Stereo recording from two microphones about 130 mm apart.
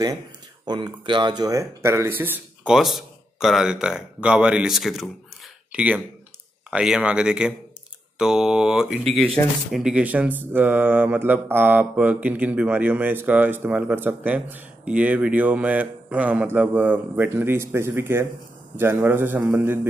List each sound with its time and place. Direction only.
0.7 s speech: 35° right (ahead or behind); by 2.7 s 15° right (ahead or behind)
2.7 s speech: 5° right (ahead or behind)